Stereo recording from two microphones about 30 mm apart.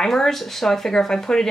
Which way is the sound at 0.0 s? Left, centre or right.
Centre.